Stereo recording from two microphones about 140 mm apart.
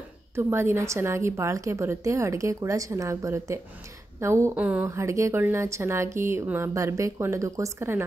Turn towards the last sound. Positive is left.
turn(degrees=-20)  # may be behind; listen again after turning